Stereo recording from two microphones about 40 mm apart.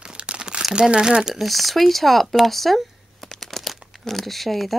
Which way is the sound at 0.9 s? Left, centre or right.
Right.